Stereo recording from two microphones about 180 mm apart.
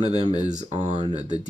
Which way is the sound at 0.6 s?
40° right (ahead or behind).